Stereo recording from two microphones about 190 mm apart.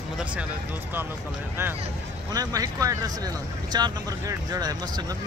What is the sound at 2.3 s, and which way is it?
Speech, 20° right (ahead or behind).